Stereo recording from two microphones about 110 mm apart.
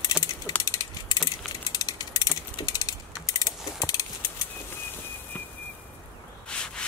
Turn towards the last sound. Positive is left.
turn(degrees=10)  # may be behind; listen again after turning